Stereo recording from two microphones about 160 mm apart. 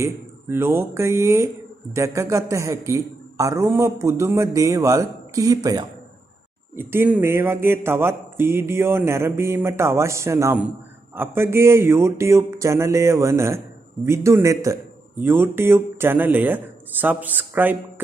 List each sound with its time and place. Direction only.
0.0 s a man's voice: 15° right (ahead or behind)